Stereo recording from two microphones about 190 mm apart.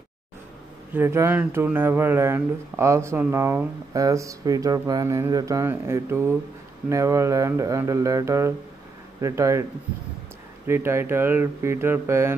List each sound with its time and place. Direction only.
0.9 s speech: 10° right (ahead or behind)
10.7 s speech: 15° right (ahead or behind)